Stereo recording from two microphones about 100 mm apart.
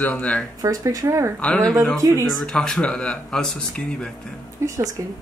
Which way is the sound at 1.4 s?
10° left (ahead or behind).